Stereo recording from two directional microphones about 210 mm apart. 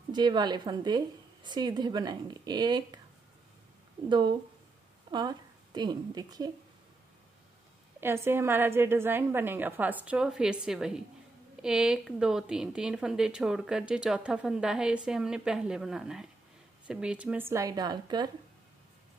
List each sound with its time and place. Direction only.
0.1 s a woman's voice: 20° right (ahead or behind)
4.1 s a woman's voice: 20° right (ahead or behind)
8.0 s a woman's voice: 10° right (ahead or behind)